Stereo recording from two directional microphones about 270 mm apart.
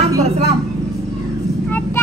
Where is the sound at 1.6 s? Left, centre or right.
Centre.